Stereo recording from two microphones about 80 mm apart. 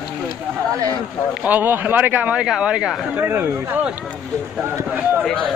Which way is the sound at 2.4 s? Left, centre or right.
Centre.